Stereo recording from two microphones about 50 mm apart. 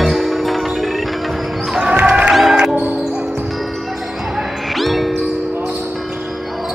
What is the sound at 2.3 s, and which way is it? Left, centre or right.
Music, centre.